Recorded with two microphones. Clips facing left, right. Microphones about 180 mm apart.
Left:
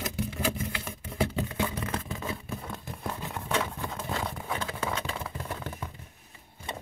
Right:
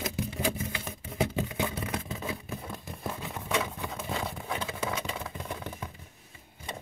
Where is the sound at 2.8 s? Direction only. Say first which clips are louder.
Left 1 dB; 5° right (ahead or behind).